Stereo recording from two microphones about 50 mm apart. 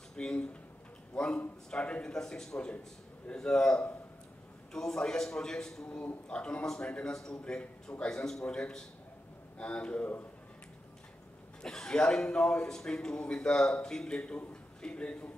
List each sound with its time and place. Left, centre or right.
0.1 s a man's voice: centre
5.9 s a man's voice: left
11.6 s a man's voice: centre